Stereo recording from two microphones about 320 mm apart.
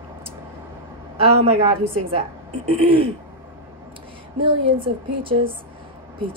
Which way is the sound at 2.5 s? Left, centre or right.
Right.